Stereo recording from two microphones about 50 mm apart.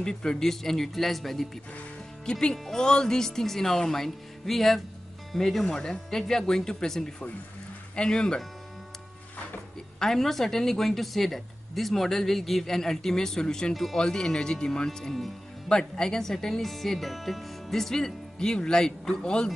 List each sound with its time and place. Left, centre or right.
0.0 s a man's voice: centre
2.5 s a woman's voice: centre
9.9 s a woman's voice: centre